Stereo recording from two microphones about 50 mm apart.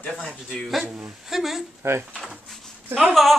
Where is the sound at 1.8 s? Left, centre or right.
Right.